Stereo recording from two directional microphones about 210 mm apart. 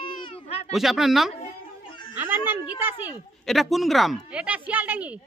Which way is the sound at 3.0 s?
Centre (ahead or behind).